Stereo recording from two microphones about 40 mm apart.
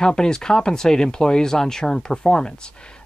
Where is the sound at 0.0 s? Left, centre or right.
Centre.